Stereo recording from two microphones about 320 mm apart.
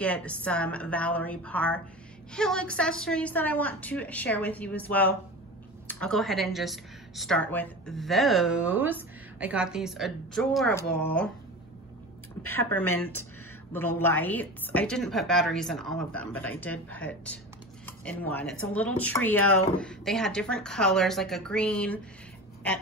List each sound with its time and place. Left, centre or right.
0.0 s a woman's voice: centre
12.4 s a woman's voice: centre